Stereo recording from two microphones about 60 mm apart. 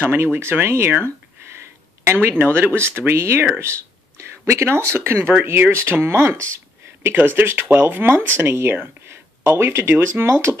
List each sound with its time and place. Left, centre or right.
0.0 s speech: right
2.0 s speech: right
7.0 s speech: right